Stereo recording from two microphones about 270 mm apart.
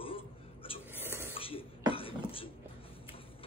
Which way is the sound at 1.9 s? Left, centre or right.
Centre.